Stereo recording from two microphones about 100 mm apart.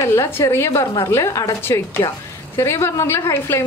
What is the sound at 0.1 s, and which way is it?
A woman's voice, 25° left (ahead or behind).